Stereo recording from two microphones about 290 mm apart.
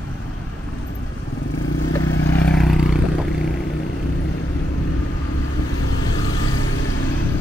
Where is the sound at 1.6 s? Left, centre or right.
Left.